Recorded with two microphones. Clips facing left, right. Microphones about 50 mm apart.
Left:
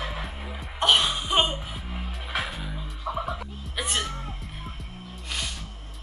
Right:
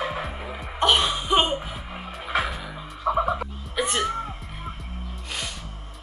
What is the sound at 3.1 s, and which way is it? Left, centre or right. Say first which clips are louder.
Music: right 8 dB; centre.